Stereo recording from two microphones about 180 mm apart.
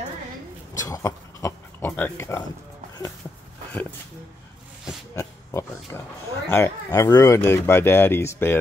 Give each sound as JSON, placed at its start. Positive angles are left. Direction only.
{"t": 0.7, "sound": "speech", "side_deg": 20}
{"t": 5.1, "sound": "pig", "side_deg": 15}
{"t": 6.5, "sound": "speech", "side_deg": 15}